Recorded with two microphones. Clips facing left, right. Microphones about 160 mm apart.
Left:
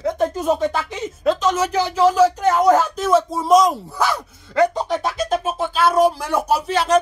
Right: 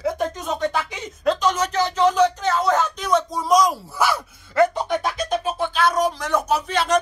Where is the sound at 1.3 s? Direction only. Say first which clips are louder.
Left 2 dB; 5° left (ahead or behind).